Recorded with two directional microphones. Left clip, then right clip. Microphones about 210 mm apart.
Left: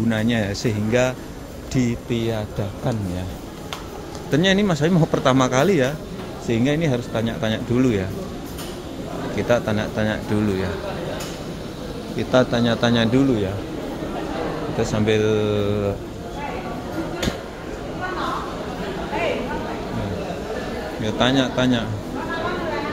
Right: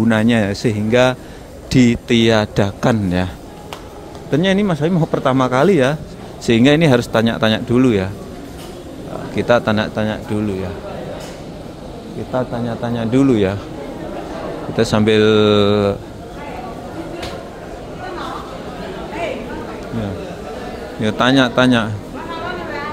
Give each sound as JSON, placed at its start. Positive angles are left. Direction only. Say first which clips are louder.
{"t": 0.1, "sound": "a man's voice", "louder": "right 7 dB", "side_deg": -25}
{"t": 4.3, "sound": "a man's voice", "louder": "right 2 dB", "side_deg": -15}
{"t": 9.3, "sound": "a man's voice", "louder": "right 6 dB", "side_deg": -25}
{"t": 12.3, "sound": "a man's voice", "louder": "left 3 dB", "side_deg": 5}
{"t": 14.8, "sound": "a man's voice", "louder": "right 7 dB", "side_deg": -30}
{"t": 21.0, "sound": "a man's voice", "louder": "right 6 dB", "side_deg": -30}